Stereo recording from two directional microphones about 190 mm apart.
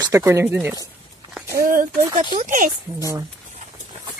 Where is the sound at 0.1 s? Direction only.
15° right (ahead or behind).